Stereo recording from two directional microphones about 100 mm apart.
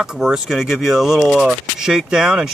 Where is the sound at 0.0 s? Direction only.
5° right (ahead or behind).